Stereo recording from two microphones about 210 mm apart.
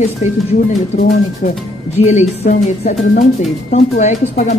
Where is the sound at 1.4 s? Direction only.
35° left (ahead or behind).